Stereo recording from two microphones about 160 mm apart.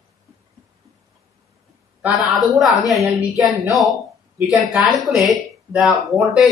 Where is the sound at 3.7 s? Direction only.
Centre (ahead or behind).